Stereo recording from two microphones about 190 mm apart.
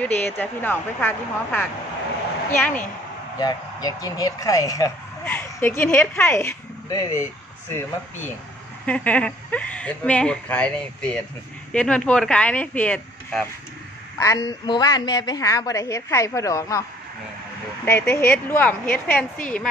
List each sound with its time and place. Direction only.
0.0 s a woman's voice: 10° left (ahead or behind)
3.3 s speech: 20° left (ahead or behind)
8.8 s a woman's voice: 5° left (ahead or behind)
14.2 s a woman's voice: 20° left (ahead or behind)
17.8 s a woman's voice: 10° left (ahead or behind)